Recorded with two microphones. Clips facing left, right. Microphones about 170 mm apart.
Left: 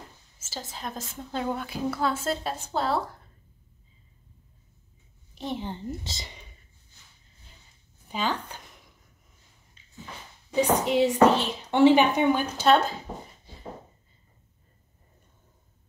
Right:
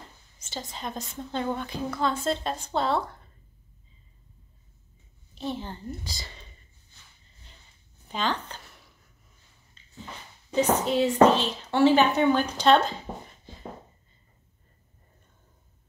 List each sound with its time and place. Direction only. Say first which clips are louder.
0.4 s a woman's voice: right 1 dB; centre (ahead or behind)
5.3 s a woman's voice: left 1 dB; 15° left (ahead or behind)
8.1 s speech: even; 10° left (ahead or behind)
9.8 s a sound: even; 10° left (ahead or behind)
10.5 s speech: left 1 dB; 15° left (ahead or behind)